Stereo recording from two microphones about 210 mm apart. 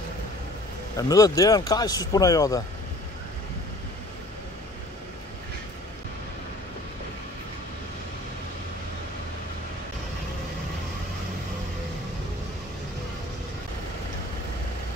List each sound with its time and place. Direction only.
0.9 s speech: 15° left (ahead or behind)